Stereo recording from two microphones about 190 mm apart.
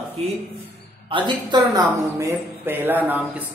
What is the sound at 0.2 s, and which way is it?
A woman's voice, 35° right (ahead or behind).